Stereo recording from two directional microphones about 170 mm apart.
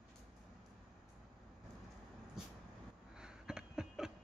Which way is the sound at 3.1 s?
5° right (ahead or behind).